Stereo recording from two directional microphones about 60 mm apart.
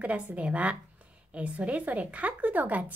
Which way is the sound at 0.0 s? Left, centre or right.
Right.